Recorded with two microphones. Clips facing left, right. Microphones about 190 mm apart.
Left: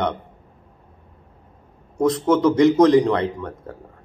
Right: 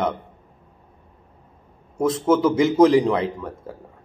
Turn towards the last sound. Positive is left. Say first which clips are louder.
# left 1 dB
turn(degrees=-5)  # may be behind; listen again after turning